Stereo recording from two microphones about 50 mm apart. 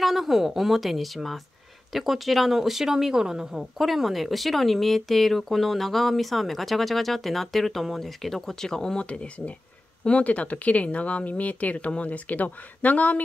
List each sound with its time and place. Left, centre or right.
0.0 s speech: centre; by 13.2 s left